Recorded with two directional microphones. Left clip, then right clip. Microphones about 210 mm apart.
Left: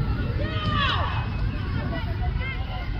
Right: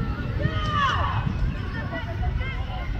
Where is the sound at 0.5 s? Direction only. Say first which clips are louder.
Right 2 dB; 15° left (ahead or behind).